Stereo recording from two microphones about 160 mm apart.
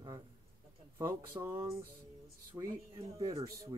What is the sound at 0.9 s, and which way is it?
Speech, 15° right (ahead or behind).